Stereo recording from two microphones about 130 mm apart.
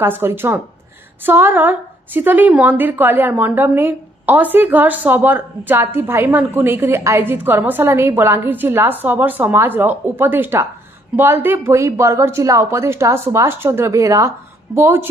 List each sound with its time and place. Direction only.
0.0 s a woman's voice: 15° right (ahead or behind)